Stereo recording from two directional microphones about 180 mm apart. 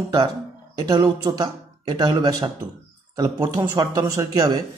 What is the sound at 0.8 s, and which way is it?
A man's voice, 20° right (ahead or behind).